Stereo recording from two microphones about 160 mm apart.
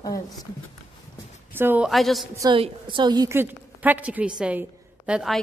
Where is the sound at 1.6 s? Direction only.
15° right (ahead or behind).